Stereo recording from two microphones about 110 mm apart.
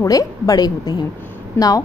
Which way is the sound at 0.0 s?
35° left (ahead or behind).